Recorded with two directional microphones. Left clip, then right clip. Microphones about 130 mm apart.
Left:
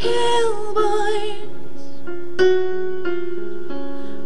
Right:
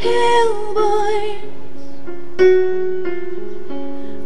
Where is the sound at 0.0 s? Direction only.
5° right (ahead or behind).